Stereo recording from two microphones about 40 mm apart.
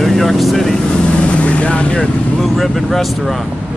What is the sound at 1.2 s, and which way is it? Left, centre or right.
Vehicle, left.